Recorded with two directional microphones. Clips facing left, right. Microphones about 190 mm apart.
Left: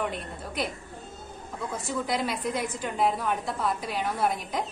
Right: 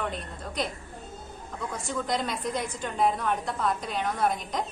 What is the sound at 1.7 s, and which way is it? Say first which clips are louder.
A woman's voice: even; 5° left (ahead or behind).